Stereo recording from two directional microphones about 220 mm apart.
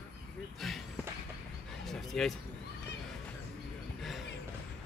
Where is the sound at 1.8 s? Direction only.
Centre (ahead or behind).